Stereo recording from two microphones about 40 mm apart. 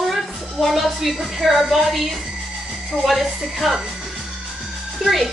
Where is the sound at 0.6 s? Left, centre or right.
Centre.